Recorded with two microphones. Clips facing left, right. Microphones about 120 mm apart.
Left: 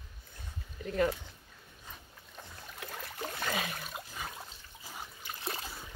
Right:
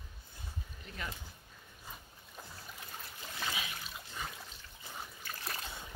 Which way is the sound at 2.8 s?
65° left (ahead or behind).